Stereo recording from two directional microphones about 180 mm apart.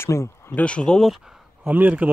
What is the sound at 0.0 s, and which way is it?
Speech, 15° left (ahead or behind).